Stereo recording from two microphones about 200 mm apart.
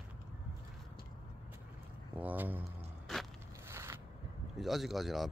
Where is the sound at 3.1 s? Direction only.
Centre (ahead or behind).